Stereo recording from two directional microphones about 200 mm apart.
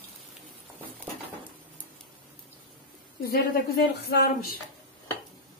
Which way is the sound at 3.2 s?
50° left (ahead or behind).